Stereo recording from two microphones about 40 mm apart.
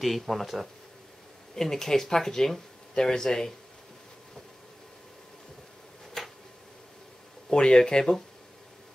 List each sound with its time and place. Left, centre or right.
0.0 s speech: centre
1.5 s speech: centre
6.2 s a sound: centre
7.4 s speech: centre